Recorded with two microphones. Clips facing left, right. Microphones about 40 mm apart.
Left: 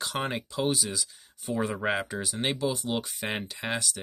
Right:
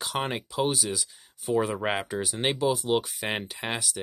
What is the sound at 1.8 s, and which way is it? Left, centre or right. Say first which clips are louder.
Speech: right 1 dB; centre.